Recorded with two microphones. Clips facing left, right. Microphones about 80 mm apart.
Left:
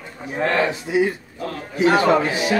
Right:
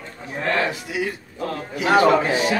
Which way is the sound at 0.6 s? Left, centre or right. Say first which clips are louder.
Left 5 dB; left.